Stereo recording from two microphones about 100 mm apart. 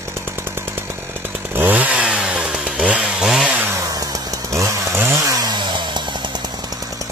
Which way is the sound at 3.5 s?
20° right (ahead or behind).